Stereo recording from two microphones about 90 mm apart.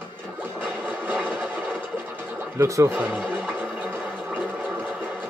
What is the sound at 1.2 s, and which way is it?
Engine, 5° left (ahead or behind).